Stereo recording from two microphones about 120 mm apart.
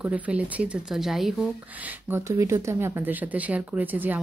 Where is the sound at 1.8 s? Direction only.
20° right (ahead or behind).